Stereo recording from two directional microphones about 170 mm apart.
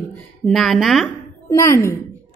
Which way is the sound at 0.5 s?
Centre (ahead or behind).